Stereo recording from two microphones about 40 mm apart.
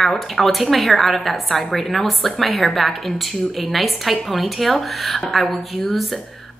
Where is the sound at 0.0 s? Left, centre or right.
Centre.